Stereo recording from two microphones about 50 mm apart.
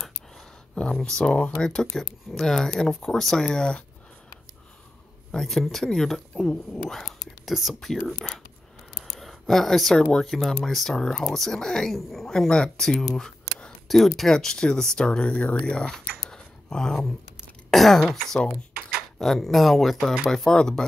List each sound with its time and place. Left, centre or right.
0.7 s speech: centre
5.3 s speech: centre
6.9 s whispering: centre
8.1 s speech: centre
9.0 s a sound: centre
10.1 s speech: centre
12.3 s speech: centre